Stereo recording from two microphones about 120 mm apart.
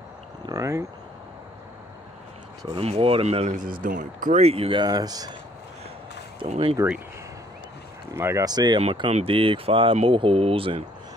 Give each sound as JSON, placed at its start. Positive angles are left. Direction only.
{"t": 0.5, "sound": "a sound", "side_deg": -25}
{"t": 2.7, "sound": "speech", "side_deg": -55}
{"t": 3.9, "sound": "speech", "side_deg": -90}
{"t": 4.8, "sound": "speech", "side_deg": -35}
{"t": 6.5, "sound": "speech", "side_deg": -55}
{"t": 8.1, "sound": "speech", "side_deg": -25}
{"t": 8.5, "sound": "speech", "side_deg": -35}
{"t": 9.1, "sound": "speech", "side_deg": -50}